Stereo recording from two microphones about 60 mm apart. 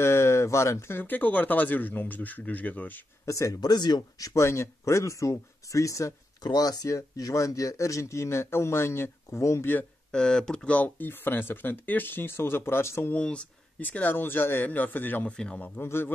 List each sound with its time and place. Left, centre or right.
0.0 s speech: left
0.9 s speech: left
3.3 s speech: left
10.1 s speech: centre
11.0 s speech: left
13.1 s speech: centre
13.7 s speech: left
15.3 s speech: centre
15.8 s speech: left